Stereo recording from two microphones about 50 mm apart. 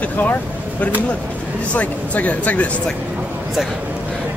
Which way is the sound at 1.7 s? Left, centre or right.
Left.